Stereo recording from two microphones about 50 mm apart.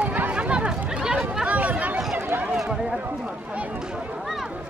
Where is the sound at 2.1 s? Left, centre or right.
Right.